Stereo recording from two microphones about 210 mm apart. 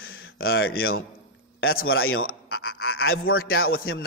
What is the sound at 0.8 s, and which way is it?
Speech, 75° left (ahead or behind).